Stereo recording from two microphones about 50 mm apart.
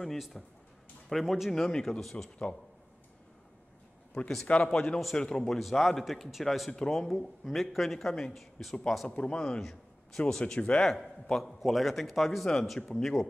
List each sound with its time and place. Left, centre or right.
0.3 s speech: centre
4.2 s speech: left; by 9.1 s centre
9.1 s speech: centre
10.4 s speech: left
10.8 s speech: centre